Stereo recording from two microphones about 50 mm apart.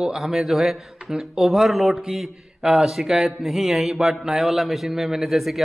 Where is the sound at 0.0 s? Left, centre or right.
Centre.